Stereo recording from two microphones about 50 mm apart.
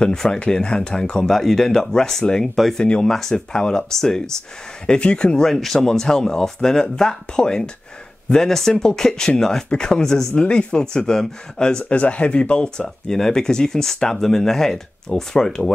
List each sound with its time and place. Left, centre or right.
0.0 s speech: centre
2.8 s speech: centre
5.5 s speech: centre